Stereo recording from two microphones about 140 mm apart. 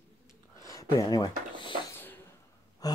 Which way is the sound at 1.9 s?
15° left (ahead or behind).